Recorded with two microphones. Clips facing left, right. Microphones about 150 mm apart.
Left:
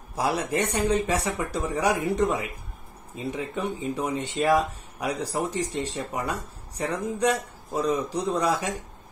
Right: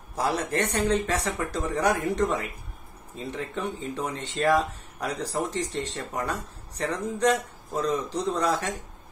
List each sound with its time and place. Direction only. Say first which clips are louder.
0.1 s speech: left 1 dB; 10° left (ahead or behind)